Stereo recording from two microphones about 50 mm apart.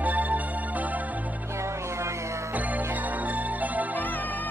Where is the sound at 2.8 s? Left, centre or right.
Right.